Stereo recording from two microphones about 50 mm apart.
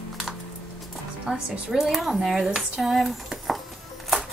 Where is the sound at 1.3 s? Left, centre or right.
Centre.